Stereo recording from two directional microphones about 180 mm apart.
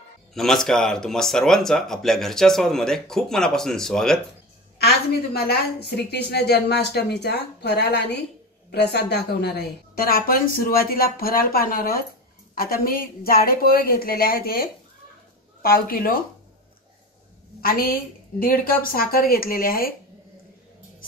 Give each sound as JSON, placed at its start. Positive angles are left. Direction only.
{"t": 0.3, "sound": "speech", "side_deg": 0}
{"t": 4.7, "sound": "a woman's voice", "side_deg": 60}
{"t": 17.6, "sound": "a woman's voice", "side_deg": 55}